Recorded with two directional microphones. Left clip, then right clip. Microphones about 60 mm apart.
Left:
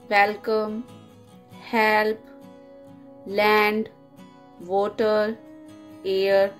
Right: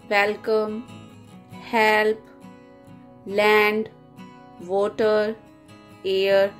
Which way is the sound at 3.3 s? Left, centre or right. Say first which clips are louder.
Right 1 dB; centre.